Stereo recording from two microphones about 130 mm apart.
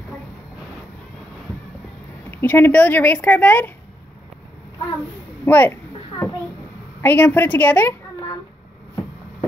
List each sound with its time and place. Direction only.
2.3 s a woman's voice: 15° left (ahead or behind)
5.4 s a sound: 15° left (ahead or behind)
7.0 s a woman's voice: 15° left (ahead or behind)